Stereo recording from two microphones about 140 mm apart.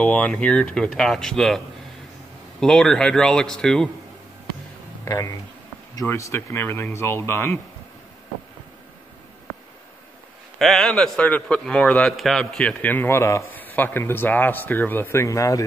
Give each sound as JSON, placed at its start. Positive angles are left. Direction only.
{"t": 0.0, "sound": "speech", "side_deg": 5}
{"t": 2.6, "sound": "speech", "side_deg": 5}
{"t": 5.0, "sound": "a man's voice", "side_deg": 20}
{"t": 10.6, "sound": "a man's voice", "side_deg": 0}